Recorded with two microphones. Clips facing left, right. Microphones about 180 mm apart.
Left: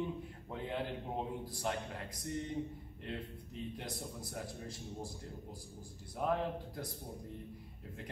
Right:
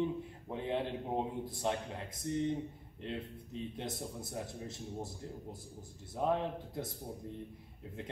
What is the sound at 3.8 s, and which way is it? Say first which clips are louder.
Speech: right 3 dB; 25° right (ahead or behind).